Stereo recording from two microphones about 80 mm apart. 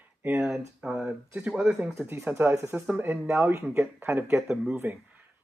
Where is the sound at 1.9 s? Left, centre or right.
Right.